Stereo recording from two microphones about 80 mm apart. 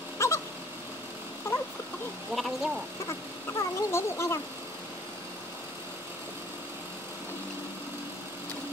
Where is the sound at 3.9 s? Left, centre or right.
Left.